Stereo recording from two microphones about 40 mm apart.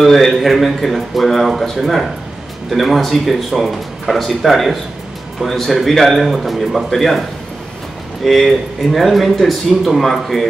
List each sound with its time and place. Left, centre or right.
0.0 s a man's voice: centre